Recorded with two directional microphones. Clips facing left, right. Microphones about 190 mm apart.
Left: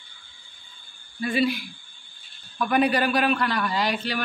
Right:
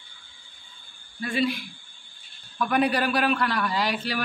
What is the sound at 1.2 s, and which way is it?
A man's voice, 5° left (ahead or behind).